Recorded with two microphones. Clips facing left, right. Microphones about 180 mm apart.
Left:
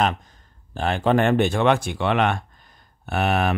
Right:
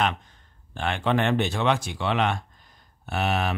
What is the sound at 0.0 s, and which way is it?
Speech, 40° left (ahead or behind).